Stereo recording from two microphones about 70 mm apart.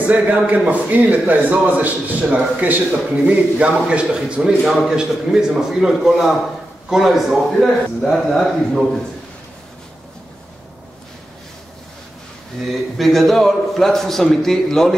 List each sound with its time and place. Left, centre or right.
0.0 s a man's voice: centre
12.9 s a man's voice: centre